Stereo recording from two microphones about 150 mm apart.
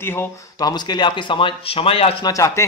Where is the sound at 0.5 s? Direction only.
25° left (ahead or behind).